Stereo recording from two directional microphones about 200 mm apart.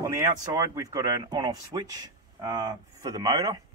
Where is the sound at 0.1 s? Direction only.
20° right (ahead or behind).